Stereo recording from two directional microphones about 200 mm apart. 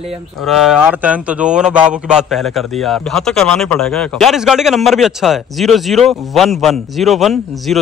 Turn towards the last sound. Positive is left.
turn(degrees=0)  # may be behind; listen again after turning